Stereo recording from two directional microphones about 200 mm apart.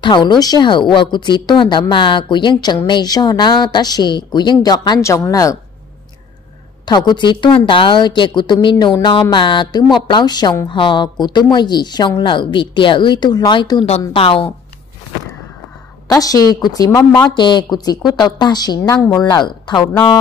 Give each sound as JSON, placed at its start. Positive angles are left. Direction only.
{"t": 0.0, "sound": "a woman's voice", "side_deg": 25}
{"t": 6.9, "sound": "a woman's voice", "side_deg": 20}
{"t": 16.1, "sound": "a woman's voice", "side_deg": 20}
{"t": 17.1, "sound": "a woman's voice", "side_deg": 5}
{"t": 17.4, "sound": "a woman's voice", "side_deg": 20}